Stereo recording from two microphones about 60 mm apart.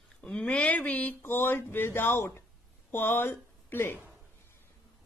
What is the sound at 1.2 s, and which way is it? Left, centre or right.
Speech, left.